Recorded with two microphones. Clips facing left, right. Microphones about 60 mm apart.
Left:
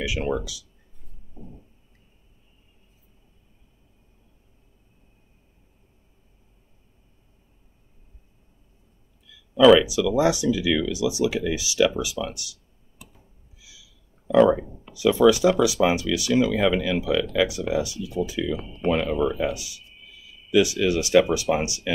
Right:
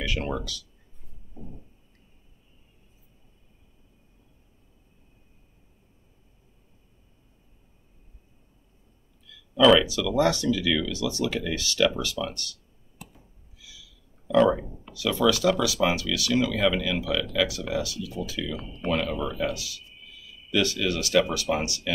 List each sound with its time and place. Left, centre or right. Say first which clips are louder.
0.0 s speech: left 4 dB; centre
9.3 s speech: left 4 dB; centre
13.6 s owl: right 2 dB; centre
14.3 s speech: left 3 dB; centre
14.9 s speech: left 6 dB; centre